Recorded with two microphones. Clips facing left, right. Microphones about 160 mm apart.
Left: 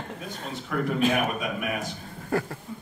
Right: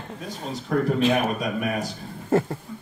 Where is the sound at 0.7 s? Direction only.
35° right (ahead or behind).